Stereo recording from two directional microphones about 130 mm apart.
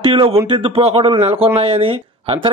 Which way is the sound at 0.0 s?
40° right (ahead or behind).